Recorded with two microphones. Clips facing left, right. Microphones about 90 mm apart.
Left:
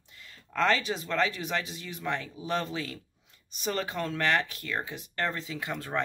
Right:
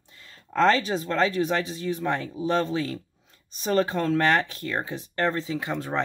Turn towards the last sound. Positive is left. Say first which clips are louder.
# right 4 dB
turn(degrees=-25)  # may be behind; listen again after turning